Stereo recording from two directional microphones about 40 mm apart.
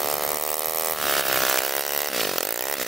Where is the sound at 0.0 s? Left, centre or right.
Centre.